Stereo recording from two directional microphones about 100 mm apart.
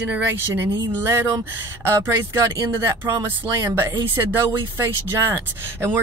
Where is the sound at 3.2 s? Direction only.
25° right (ahead or behind).